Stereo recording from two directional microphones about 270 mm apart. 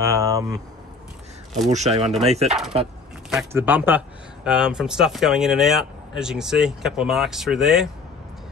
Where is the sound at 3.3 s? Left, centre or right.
Centre.